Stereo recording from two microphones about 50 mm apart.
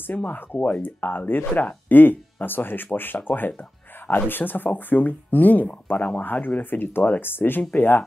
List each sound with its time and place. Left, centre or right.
0.3 s speech: left